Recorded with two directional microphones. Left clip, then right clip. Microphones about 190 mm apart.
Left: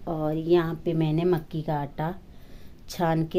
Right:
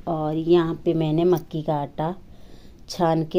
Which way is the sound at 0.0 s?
20° right (ahead or behind).